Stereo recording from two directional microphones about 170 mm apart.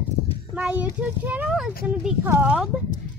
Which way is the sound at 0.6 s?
5° right (ahead or behind).